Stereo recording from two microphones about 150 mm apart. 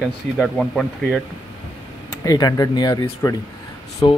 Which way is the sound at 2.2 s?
25° left (ahead or behind).